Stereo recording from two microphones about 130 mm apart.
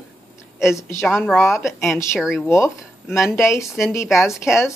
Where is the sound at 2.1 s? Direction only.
5° right (ahead or behind).